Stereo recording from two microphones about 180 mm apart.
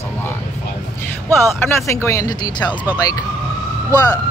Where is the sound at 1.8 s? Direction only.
15° left (ahead or behind).